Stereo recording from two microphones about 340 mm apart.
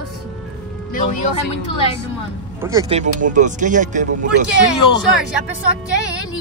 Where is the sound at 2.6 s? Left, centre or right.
Centre.